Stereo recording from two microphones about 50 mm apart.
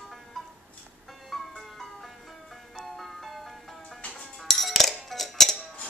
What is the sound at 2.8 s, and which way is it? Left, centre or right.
Music, centre.